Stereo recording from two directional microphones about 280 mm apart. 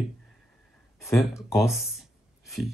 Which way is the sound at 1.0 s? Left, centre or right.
Centre.